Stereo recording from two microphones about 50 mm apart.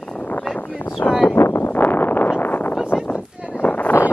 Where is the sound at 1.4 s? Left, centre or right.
Left.